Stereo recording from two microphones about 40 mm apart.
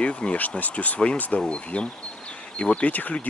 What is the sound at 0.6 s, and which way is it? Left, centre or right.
Speech, left.